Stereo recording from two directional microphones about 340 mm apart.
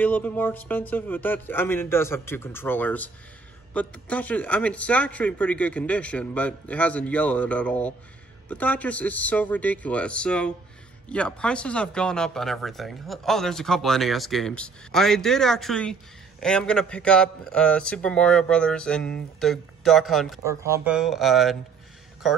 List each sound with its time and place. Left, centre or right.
0.0 s speech: centre